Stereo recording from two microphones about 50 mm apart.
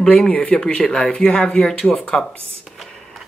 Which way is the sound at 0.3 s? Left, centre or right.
Centre.